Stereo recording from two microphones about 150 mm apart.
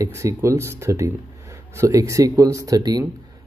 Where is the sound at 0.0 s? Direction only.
20° right (ahead or behind).